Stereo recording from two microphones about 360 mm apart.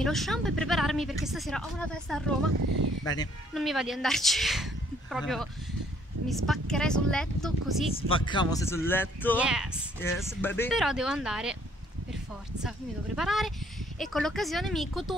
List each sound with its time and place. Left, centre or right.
0.0 s speech: centre
2.5 s speech: right
3.5 s speech: centre
8.1 s speech: centre
12.6 s speech: centre